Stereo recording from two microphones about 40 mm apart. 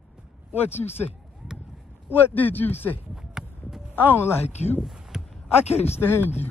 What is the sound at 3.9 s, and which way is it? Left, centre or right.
Speech, left.